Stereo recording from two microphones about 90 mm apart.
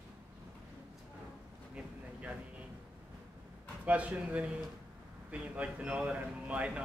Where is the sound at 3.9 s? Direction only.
15° right (ahead or behind).